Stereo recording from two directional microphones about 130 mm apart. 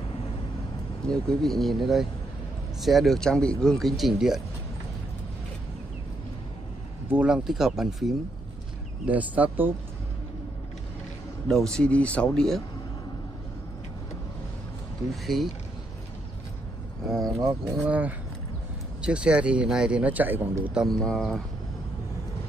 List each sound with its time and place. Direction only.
1.0 s speech: 5° left (ahead or behind)
7.1 s speech: 10° right (ahead or behind)
11.4 s speech: 5° left (ahead or behind)
15.3 s speech: centre (ahead or behind)
17.4 s speech: 25° right (ahead or behind)
17.7 s speech: 10° right (ahead or behind); by 21.4 s 5° left (ahead or behind)